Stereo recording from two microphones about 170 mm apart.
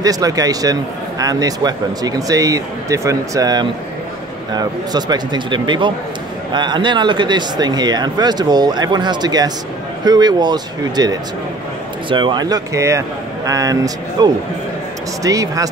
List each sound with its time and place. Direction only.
0.0 s speech: 20° right (ahead or behind)